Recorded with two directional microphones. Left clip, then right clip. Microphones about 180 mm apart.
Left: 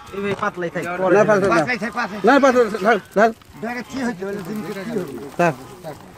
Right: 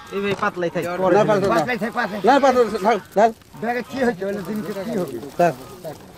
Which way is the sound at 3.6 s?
45° right (ahead or behind).